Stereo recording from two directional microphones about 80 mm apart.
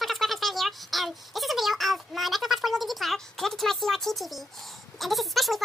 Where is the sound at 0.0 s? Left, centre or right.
Centre.